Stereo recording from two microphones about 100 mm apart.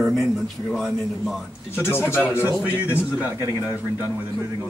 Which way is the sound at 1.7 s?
25° left (ahead or behind).